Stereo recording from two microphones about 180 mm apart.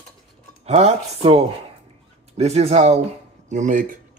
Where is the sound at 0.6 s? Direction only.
35° right (ahead or behind).